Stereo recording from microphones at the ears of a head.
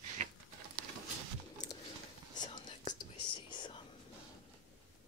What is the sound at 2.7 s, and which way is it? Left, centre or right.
Whispering, left.